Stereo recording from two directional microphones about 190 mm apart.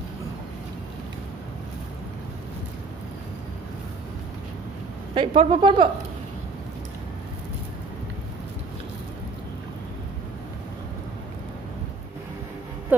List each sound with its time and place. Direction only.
5.1 s speech: 25° right (ahead or behind)